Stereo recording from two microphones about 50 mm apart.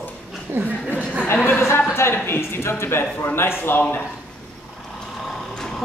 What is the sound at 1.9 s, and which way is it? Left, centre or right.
Speech, left.